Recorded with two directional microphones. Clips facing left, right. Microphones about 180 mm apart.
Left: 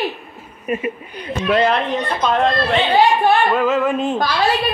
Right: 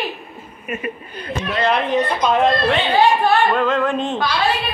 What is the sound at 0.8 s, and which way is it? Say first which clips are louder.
Music: left 3 dB; 20° left (ahead or behind).